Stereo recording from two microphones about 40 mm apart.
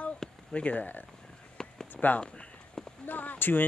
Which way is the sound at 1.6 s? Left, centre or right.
Centre.